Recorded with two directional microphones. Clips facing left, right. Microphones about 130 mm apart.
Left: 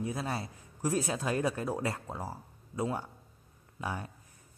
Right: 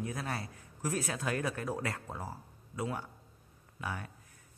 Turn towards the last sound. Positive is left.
turn(degrees=25)  # may be behind; listen again after turning